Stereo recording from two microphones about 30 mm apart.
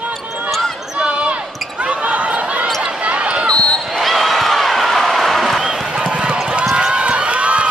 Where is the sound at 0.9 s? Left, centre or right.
Right.